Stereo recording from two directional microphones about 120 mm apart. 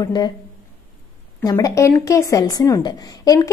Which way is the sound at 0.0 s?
35° left (ahead or behind).